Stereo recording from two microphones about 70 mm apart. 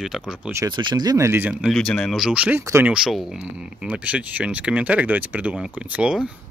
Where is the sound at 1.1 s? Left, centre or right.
Right.